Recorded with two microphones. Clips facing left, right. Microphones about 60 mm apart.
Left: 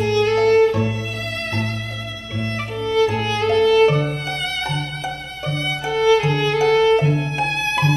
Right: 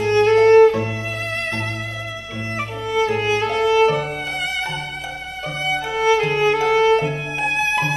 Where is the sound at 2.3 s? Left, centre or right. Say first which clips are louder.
Left 2 dB; centre.